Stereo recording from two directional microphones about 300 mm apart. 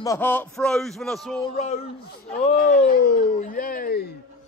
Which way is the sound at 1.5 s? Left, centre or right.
Left.